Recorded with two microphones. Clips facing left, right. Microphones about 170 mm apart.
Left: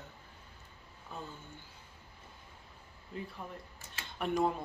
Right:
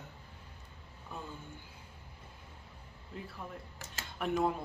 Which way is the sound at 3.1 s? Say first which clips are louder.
Left 3 dB; centre (ahead or behind).